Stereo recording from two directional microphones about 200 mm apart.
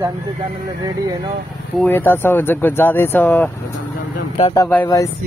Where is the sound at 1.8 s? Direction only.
10° left (ahead or behind).